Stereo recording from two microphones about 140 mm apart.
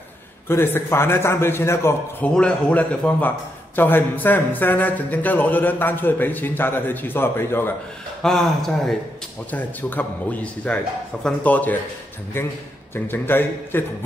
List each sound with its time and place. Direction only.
0.5 s a man's voice: 15° left (ahead or behind)
8.2 s a man's voice: 5° left (ahead or behind)